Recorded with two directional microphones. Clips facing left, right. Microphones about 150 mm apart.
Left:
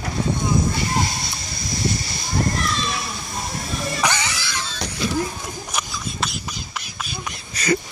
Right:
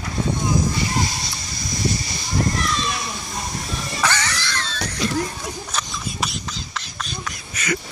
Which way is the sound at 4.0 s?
15° left (ahead or behind).